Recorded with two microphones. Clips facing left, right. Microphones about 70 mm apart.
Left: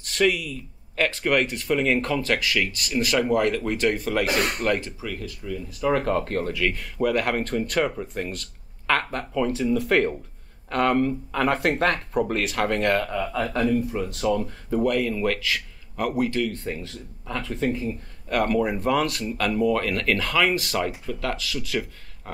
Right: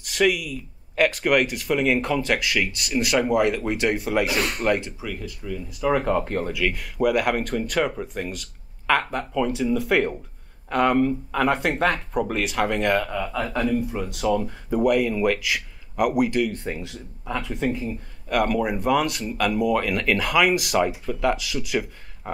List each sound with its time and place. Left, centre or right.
0.0 s speech: centre
4.3 s speech: left
4.6 s speech: centre